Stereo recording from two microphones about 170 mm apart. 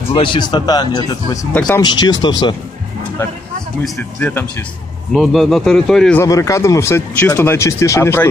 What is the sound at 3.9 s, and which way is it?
Speech, 10° left (ahead or behind).